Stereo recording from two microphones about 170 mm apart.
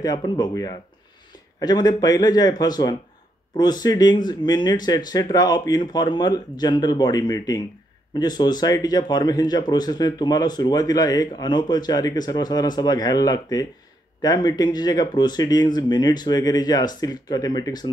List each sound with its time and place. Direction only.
0.0 s speech: 25° left (ahead or behind)